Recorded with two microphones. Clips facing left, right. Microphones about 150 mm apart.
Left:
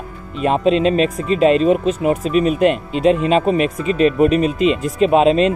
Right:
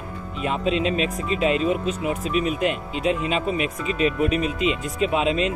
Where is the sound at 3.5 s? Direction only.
10° right (ahead or behind).